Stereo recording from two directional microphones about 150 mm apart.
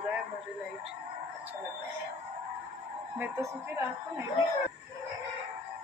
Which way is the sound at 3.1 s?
15° right (ahead or behind).